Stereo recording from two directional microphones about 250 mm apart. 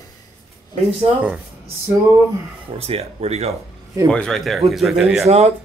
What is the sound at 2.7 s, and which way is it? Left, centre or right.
Speech, right.